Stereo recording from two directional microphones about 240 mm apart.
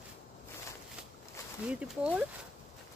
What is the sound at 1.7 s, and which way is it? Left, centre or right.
Speech, centre.